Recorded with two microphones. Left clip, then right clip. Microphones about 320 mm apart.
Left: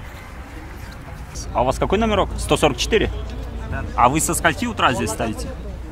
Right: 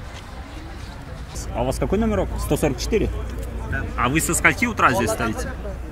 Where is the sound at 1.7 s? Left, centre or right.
Left.